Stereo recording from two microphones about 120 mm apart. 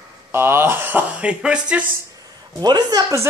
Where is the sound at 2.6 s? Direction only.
35° right (ahead or behind).